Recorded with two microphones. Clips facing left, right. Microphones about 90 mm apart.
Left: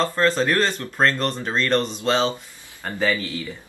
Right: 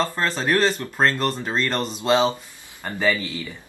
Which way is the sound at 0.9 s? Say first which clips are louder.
Even; 5° right (ahead or behind).